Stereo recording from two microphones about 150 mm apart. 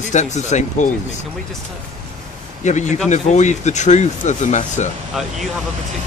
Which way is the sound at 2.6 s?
50° left (ahead or behind).